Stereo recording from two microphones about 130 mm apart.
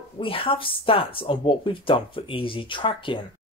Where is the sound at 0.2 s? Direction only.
40° left (ahead or behind).